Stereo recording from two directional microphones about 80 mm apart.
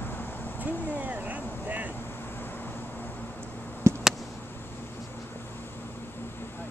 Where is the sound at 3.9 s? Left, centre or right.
Right.